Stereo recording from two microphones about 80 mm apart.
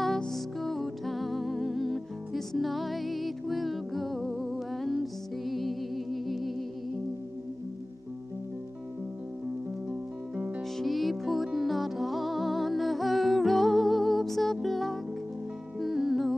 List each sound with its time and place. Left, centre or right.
0.0 s music: centre
9.8 s music: centre
10.8 s music: centre